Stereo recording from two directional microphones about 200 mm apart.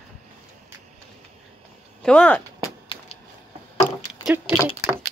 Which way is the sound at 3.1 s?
30° left (ahead or behind).